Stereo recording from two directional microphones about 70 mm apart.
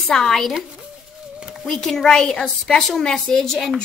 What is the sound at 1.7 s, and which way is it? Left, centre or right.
A woman's voice, centre.